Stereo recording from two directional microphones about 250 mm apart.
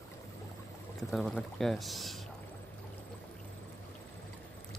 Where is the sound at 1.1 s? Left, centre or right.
Centre.